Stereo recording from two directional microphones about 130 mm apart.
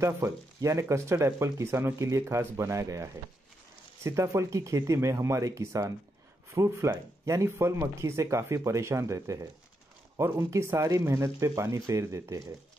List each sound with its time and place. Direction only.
0.0 s speech: 25° right (ahead or behind)